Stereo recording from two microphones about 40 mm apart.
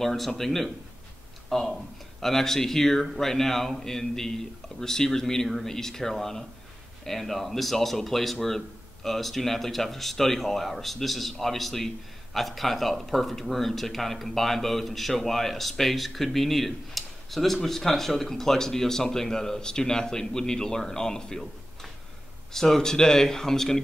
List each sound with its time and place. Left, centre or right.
0.0 s speech: centre
22.5 s speech: centre